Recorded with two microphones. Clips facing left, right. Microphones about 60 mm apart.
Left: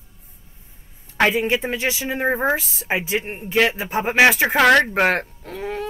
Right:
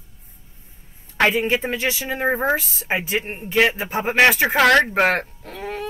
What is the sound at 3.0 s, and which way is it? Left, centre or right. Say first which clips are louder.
Speech: even; right.